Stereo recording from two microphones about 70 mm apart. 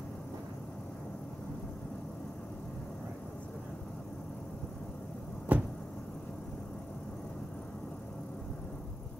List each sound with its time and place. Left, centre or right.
5.5 s vehicle: right